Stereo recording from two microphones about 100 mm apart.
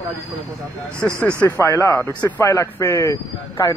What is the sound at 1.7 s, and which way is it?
Speech, 30° left (ahead or behind).